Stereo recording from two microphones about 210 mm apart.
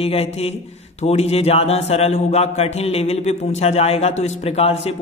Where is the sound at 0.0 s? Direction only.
30° left (ahead or behind).